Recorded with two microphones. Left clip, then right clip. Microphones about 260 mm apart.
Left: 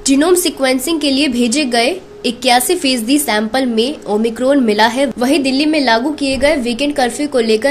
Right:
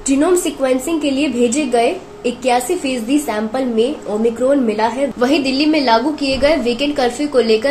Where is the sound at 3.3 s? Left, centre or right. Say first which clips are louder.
Left 4 dB; left.